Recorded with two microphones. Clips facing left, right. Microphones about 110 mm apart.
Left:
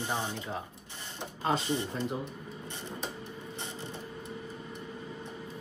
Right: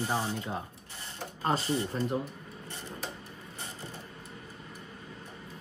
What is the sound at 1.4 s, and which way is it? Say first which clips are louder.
Speech: even; centre (ahead or behind).